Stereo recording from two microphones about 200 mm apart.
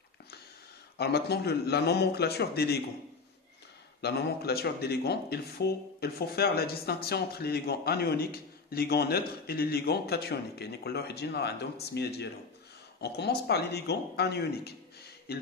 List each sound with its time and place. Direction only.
0.9 s speech: 55° left (ahead or behind)
4.0 s speech: 55° left (ahead or behind)